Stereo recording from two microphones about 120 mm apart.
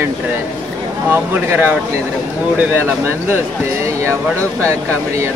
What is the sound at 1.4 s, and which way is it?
Speech, 15° right (ahead or behind).